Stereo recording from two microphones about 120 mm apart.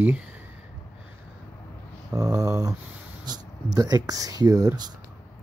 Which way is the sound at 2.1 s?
30° right (ahead or behind).